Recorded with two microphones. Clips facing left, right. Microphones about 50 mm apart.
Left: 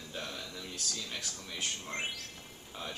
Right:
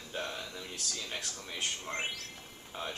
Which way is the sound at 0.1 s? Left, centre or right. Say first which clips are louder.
Right 4 dB; centre.